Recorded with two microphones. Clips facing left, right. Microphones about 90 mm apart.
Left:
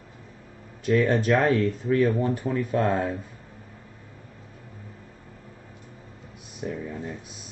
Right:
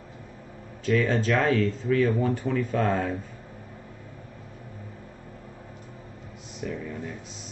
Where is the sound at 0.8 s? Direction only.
15° left (ahead or behind).